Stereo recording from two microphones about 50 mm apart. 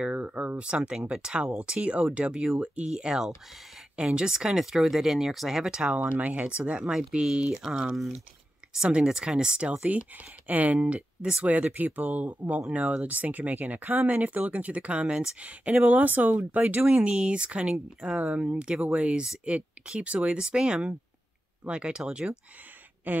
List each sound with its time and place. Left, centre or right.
0.3 s speech: right; by 5.6 s centre
5.6 s speech: centre
6.9 s speech: centre; by 16.8 s right
16.8 s speech: centre
23.1 s speech: right